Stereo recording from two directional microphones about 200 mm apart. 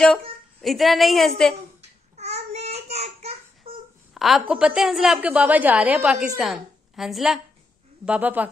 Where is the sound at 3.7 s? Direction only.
30° right (ahead or behind).